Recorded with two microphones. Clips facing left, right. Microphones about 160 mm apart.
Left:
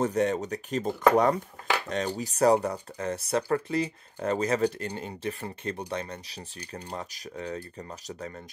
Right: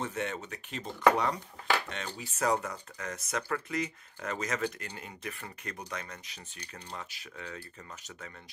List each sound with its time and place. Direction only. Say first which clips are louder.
0.0 s speech: left 10 dB; 40° left (ahead or behind)